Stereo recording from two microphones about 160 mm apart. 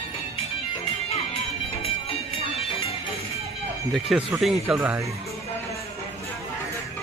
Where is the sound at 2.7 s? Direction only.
40° left (ahead or behind).